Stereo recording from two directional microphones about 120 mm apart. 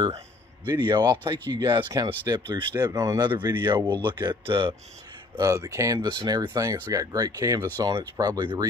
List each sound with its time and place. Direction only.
0.7 s speech: 35° right (ahead or behind)
3.3 s speech: 40° right (ahead or behind)
5.3 s speech: 25° right (ahead or behind)